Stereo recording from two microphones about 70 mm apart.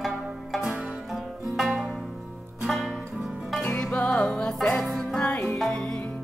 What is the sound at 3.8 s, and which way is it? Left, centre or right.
Music, centre.